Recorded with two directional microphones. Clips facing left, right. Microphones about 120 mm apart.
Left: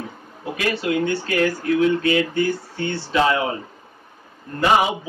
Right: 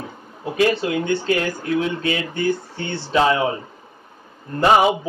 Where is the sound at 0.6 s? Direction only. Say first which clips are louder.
Right 3 dB; 25° right (ahead or behind).